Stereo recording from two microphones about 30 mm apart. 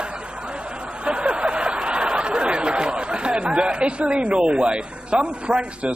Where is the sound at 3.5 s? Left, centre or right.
Right.